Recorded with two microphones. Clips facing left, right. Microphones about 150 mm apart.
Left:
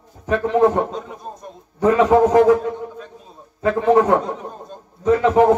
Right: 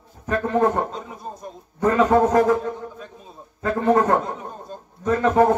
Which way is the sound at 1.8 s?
90° left.